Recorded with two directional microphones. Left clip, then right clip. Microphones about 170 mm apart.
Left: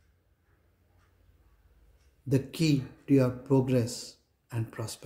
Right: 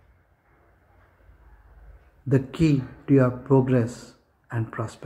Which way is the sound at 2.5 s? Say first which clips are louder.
Right 5 dB; 40° left (ahead or behind).